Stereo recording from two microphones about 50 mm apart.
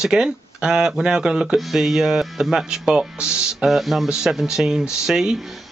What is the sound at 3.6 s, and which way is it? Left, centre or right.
A man's voice, centre.